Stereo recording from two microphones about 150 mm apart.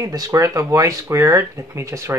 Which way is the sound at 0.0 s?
25° right (ahead or behind).